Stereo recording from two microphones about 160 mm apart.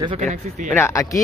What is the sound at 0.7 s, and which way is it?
Speech, 15° left (ahead or behind).